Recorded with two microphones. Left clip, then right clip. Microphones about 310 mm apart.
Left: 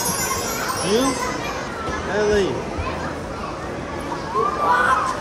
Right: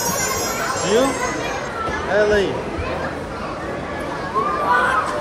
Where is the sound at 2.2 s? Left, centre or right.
Left.